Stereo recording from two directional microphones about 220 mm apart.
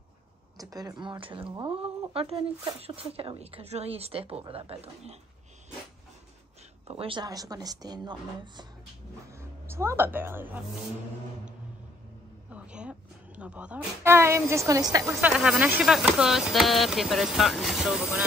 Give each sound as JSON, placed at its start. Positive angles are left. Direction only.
{"t": 0.6, "sound": "speech", "side_deg": -15}
{"t": 6.9, "sound": "a woman's voice", "side_deg": -25}
{"t": 12.4, "sound": "vehicle", "side_deg": -5}
{"t": 13.4, "sound": "a woman's voice", "side_deg": -5}